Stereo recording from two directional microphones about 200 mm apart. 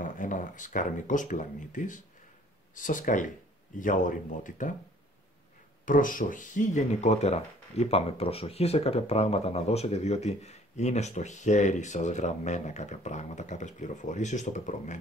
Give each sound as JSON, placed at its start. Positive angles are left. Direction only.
{"t": 0.0, "sound": "speech", "side_deg": 40}
{"t": 5.9, "sound": "speech", "side_deg": 40}